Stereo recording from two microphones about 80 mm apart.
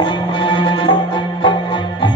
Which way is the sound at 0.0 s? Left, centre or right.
Left.